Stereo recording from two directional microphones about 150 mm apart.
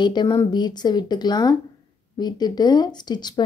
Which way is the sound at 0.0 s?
30° left (ahead or behind).